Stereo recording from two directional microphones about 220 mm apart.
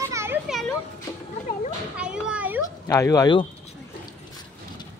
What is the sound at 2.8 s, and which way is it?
Speech, 15° left (ahead or behind).